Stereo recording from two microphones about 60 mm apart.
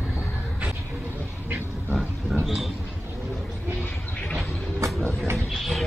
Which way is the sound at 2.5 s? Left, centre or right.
Centre.